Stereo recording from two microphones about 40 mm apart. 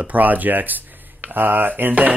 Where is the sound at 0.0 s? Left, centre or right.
Right.